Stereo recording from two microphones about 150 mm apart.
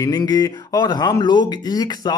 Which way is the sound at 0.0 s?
25° left (ahead or behind).